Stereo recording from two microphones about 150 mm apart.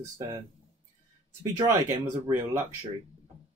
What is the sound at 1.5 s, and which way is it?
Speech, 20° right (ahead or behind).